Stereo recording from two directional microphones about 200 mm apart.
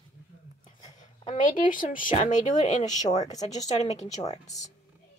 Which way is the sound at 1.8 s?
40° left (ahead or behind).